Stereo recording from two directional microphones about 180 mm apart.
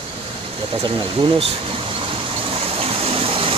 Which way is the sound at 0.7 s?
30° right (ahead or behind).